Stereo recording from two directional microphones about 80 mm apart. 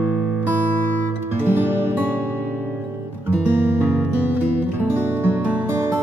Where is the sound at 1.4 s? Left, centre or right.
Right.